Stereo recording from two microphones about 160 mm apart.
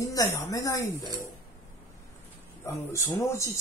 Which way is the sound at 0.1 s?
20° left (ahead or behind).